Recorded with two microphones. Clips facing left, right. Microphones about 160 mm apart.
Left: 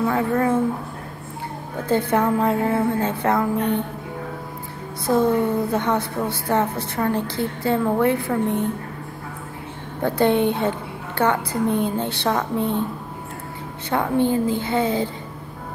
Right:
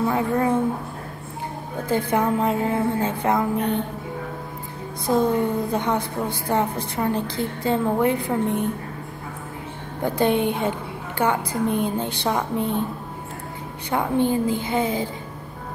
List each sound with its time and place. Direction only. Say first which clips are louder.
0.1 s a woman's voice: left 1 dB; 15° right (ahead or behind)
1.9 s a woman's voice: left 2 dB; 15° right (ahead or behind)
5.0 s a woman's voice: left 2 dB; 15° right (ahead or behind)
10.0 s a woman's voice: left 2 dB; 15° right (ahead or behind)
13.8 s a woman's voice: left 1 dB; 15° right (ahead or behind)